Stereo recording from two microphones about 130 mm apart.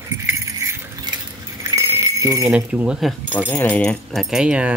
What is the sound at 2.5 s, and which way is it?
Speech, 10° right (ahead or behind).